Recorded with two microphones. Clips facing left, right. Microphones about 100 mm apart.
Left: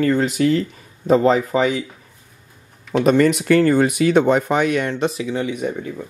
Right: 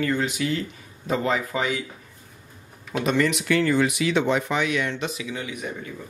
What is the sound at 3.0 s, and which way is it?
Speech, 45° left (ahead or behind).